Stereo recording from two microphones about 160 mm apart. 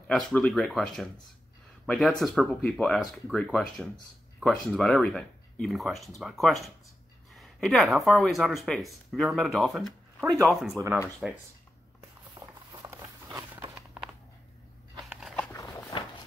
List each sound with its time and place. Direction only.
0.1 s speech: 5° left (ahead or behind)
12.4 s walk: 20° right (ahead or behind)
14.0 s a sound: 5° right (ahead or behind)
15.5 s walk: 20° left (ahead or behind)